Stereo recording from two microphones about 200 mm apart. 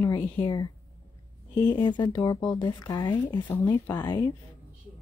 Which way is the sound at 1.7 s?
20° left (ahead or behind).